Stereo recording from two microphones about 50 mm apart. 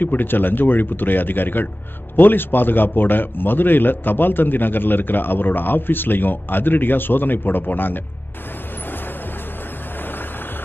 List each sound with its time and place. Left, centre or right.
0.0 s a man's voice: left